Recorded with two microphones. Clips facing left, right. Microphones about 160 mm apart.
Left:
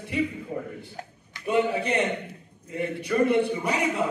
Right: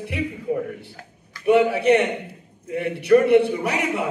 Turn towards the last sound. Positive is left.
turn(degrees=-70)  # may be behind; listen again after turning